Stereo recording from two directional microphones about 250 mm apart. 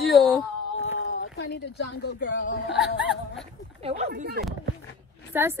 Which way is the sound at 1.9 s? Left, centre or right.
Left.